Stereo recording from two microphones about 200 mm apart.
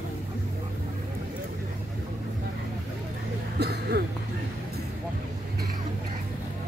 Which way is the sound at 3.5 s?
55° right (ahead or behind).